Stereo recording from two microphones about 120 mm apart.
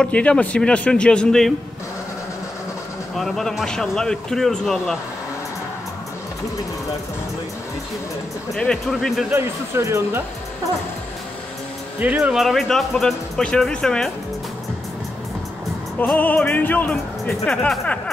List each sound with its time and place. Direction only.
0.0 s a man's voice: 10° left (ahead or behind)
3.2 s speech: centre (ahead or behind)
8.5 s speech: 5° left (ahead or behind)
9.3 s speech: 20° right (ahead or behind)
12.0 s speech: 10° right (ahead or behind); by 14.1 s 5° left (ahead or behind)
16.1 s a man's voice: 15° left (ahead or behind)